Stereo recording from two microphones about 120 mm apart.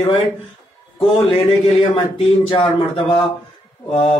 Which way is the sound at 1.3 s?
50° left (ahead or behind).